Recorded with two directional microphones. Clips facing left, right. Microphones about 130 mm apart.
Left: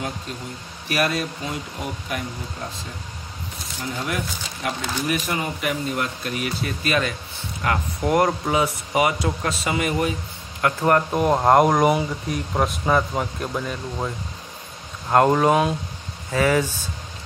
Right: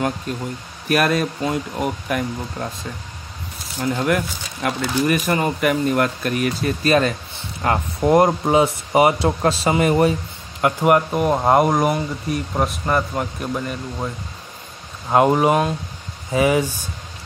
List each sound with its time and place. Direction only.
0.8 s speech: 50° right (ahead or behind)
3.8 s speech: 55° right (ahead or behind); by 7.2 s 40° right (ahead or behind)
7.6 s speech: 30° right (ahead or behind)
10.6 s speech: 15° right (ahead or behind)
11.1 s speech: centre (ahead or behind)